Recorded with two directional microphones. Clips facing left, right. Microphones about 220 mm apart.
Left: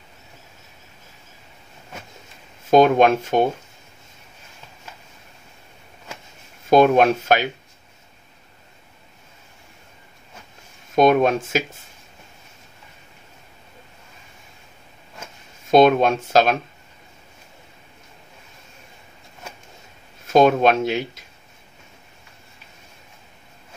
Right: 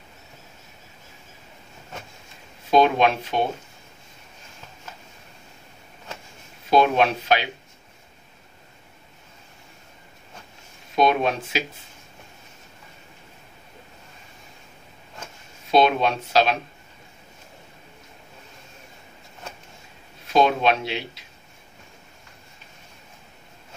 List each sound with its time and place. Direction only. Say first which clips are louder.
2.7 s speech: left 4 dB; 45° left (ahead or behind)
6.7 s speech: left 5 dB; 50° left (ahead or behind)
11.0 s speech: left 5 dB; 50° left (ahead or behind)
15.7 s speech: left 5 dB; 45° left (ahead or behind)
20.2 s speech: left 5 dB; 45° left (ahead or behind)